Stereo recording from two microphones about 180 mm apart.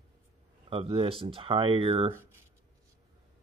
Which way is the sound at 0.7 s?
30° right (ahead or behind).